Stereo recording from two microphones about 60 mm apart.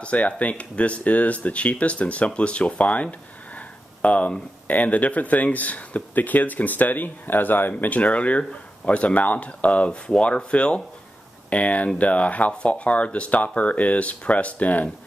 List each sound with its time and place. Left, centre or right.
0.0 s speech: left
7.7 s speech: left